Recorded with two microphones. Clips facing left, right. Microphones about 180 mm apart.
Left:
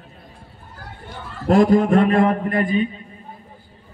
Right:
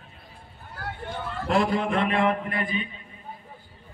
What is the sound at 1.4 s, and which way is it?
A man's voice, 45° left (ahead or behind).